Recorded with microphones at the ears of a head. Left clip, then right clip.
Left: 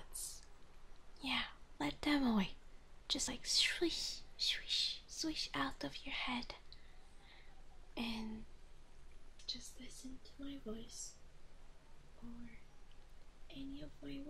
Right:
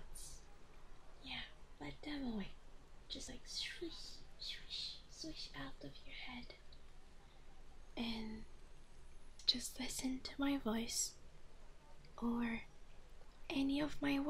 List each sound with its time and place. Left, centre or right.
1.2 s whispering: left
3.1 s speech: left
9.4 s speech: right
12.2 s speech: right